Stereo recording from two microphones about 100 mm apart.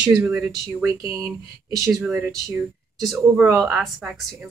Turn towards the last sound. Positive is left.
turn(degrees=0)  # may be behind; listen again after turning